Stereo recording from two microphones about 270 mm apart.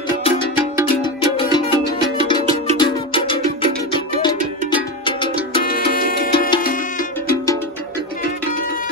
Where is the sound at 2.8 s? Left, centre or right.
Centre.